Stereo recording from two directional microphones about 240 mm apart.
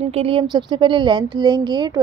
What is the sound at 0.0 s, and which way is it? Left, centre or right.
A woman's voice, right.